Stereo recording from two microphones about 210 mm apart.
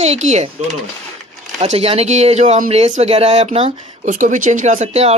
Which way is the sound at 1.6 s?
30° right (ahead or behind).